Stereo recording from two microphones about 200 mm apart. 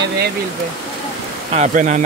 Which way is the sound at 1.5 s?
35° right (ahead or behind).